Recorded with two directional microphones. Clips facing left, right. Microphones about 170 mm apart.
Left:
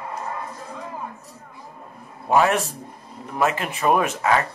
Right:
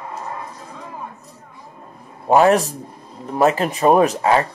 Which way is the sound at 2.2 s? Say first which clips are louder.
Right 5 dB; 35° right (ahead or behind).